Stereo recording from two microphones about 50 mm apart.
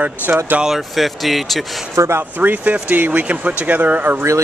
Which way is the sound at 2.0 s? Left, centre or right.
Right.